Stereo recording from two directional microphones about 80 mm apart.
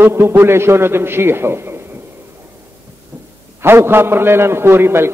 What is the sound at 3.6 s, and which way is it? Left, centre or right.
A man's voice, right.